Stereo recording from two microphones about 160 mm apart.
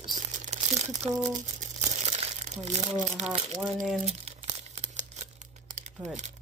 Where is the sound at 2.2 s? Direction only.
45° right (ahead or behind).